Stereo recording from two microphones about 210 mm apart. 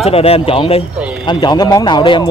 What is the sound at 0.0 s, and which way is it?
Speech, 30° left (ahead or behind).